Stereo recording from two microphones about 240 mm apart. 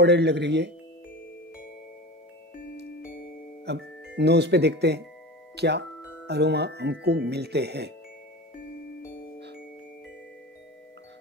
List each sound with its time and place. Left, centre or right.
0.0 s speech: right
3.7 s speech: right